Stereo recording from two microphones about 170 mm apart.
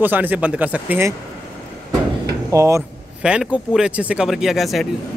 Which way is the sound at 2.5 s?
15° right (ahead or behind).